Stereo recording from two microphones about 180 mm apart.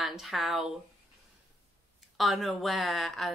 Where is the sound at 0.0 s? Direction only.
Centre (ahead or behind).